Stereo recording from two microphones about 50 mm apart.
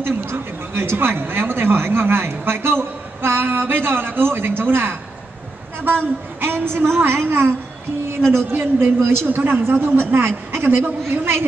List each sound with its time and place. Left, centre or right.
0.0 s speech: right